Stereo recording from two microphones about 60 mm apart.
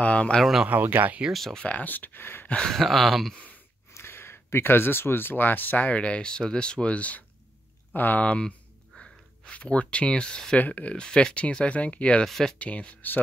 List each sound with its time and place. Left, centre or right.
0.0 s speech: left
0.4 s speech: centre
0.7 s speech: right
1.3 s speech: centre
1.6 s speech: left
2.7 s speech: centre
3.9 s speech: left
5.9 s speech: centre
8.9 s gasp: left
9.5 s speech: centre
11.0 s speech: centre
12.3 s speech: centre
12.5 s speech: left